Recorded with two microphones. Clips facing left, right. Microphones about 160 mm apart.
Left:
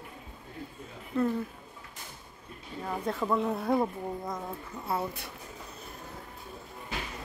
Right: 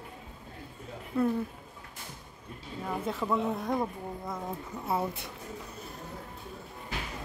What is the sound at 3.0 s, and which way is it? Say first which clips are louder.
Speech: left 2 dB; centre (ahead or behind).